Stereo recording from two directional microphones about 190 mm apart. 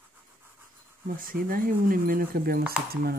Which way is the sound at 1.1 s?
50° right (ahead or behind).